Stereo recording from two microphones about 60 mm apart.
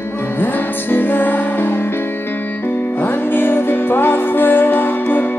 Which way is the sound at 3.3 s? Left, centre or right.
Left.